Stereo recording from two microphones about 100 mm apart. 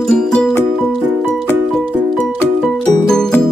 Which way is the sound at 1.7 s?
5° left (ahead or behind).